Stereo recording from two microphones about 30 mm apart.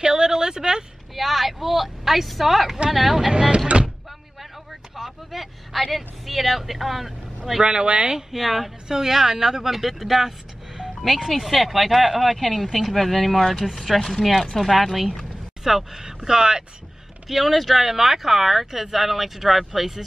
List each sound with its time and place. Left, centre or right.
0.0 s a sound: right
1.1 s a woman's voice: centre
3.3 s speech: right
3.6 s door: right
4.9 s speech: centre
7.6 s speech: right
8.3 s a woman's voice: centre
8.8 s a woman's voice: centre
12.4 s a woman's voice: centre
15.6 s speech: centre
17.3 s speech: centre